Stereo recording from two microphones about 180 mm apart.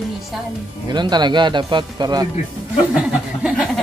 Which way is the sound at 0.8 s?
25° right (ahead or behind).